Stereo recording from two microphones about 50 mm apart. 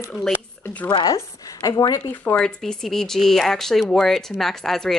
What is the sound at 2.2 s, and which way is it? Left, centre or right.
Speech, left.